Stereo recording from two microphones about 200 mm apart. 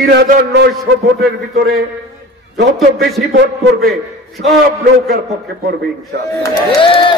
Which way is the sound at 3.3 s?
65° right (ahead or behind).